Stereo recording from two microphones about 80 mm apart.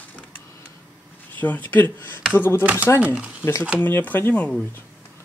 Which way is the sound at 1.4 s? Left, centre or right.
Left.